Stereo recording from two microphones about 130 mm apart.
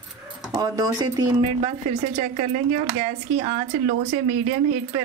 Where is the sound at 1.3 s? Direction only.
45° right (ahead or behind).